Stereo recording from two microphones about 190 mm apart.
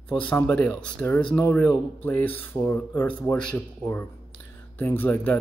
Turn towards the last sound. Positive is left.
turn(degrees=10)  # may be behind; listen again after turning